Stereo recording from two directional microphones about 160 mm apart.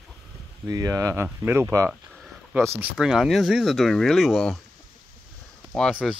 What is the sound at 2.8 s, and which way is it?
Speech, 5° right (ahead or behind).